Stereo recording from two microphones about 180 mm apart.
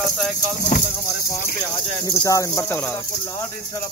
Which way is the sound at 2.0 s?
20° left (ahead or behind).